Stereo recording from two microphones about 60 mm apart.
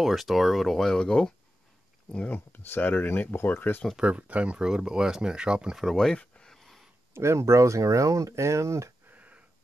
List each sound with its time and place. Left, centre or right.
0.0 s speech: centre
2.1 s speech: left
4.0 s speech: right
5.8 s speech: centre
6.1 s a sound: centre
7.2 s speech: right
9.1 s a sound: right